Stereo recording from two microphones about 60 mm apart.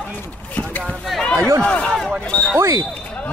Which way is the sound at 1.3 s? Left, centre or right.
Right.